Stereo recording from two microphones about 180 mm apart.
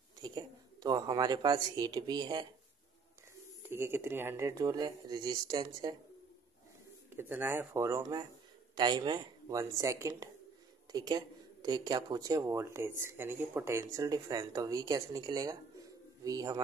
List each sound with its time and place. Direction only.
0.2 s speech: 20° right (ahead or behind)
3.6 s speech: 15° right (ahead or behind)
7.2 s speech: 10° right (ahead or behind)